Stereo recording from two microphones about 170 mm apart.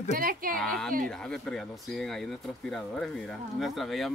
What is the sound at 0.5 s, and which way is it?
Speech, 5° left (ahead or behind).